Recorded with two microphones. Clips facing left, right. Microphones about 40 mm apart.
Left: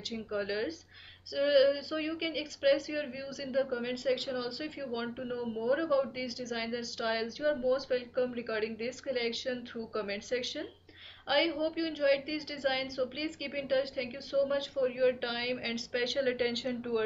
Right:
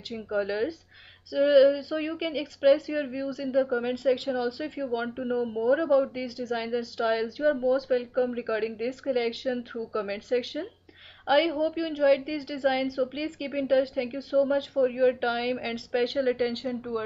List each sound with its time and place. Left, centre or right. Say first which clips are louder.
0.1 s speech: right 6 dB; centre
6.5 s speech: right 9 dB; centre
14.1 s speech: right 6 dB; right
16.2 s speech: right 5 dB; centre